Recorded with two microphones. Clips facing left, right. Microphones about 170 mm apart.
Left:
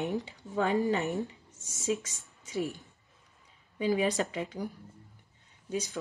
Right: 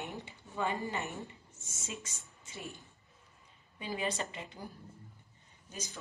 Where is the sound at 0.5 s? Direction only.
90° left.